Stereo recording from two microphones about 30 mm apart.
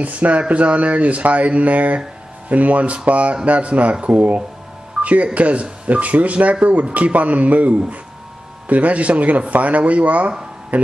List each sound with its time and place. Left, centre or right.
0.0 s speech: right